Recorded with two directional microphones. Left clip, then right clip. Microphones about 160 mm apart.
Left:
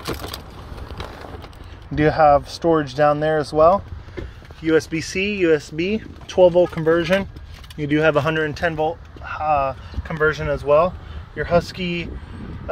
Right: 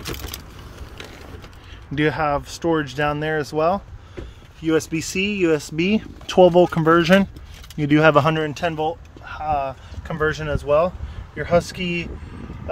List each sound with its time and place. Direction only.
2.0 s speech: 10° right (ahead or behind)
4.6 s speech: 30° right (ahead or behind)
5.6 s speech: 55° right (ahead or behind)
8.5 s speech: 15° right (ahead or behind)